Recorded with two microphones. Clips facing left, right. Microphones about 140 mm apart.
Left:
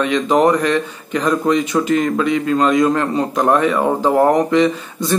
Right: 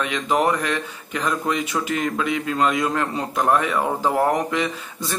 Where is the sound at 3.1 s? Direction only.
35° left (ahead or behind).